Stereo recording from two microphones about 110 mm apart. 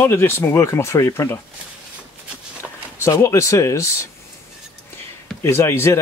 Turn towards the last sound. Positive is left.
turn(degrees=25)  # may be behind; listen again after turning